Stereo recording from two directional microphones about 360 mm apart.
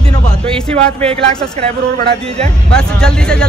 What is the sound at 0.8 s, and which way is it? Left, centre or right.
Speech, centre.